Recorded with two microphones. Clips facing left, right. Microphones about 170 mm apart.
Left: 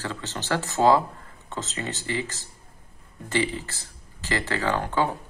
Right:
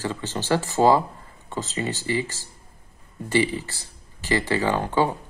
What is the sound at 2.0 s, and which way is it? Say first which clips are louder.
Speech: right 4 dB; 15° right (ahead or behind).